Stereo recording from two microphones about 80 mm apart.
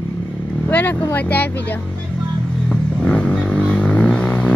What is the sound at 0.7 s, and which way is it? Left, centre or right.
Speech, left.